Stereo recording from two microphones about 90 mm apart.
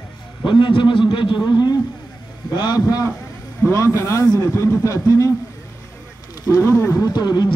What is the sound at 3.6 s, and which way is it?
A man's voice, 35° left (ahead or behind).